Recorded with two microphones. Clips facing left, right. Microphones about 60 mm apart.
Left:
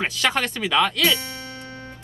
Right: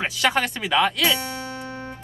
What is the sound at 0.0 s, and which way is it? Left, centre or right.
Speech, centre.